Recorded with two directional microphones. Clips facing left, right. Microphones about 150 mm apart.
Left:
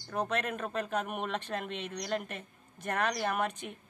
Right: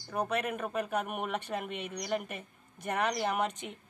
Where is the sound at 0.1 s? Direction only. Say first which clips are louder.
Right 1 dB; 10° right (ahead or behind).